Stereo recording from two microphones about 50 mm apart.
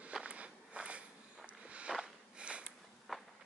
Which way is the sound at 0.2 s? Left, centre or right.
Right.